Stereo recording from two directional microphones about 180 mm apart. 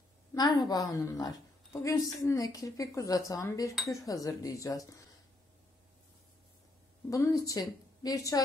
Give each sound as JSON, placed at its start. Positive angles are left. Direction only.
{"t": 0.3, "sound": "a woman's voice", "side_deg": 25}
{"t": 7.1, "sound": "a woman's voice", "side_deg": 20}